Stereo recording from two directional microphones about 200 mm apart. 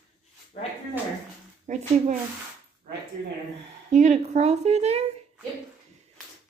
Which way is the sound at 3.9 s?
35° right (ahead or behind).